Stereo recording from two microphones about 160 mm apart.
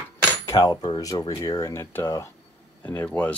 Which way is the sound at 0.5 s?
20° left (ahead or behind).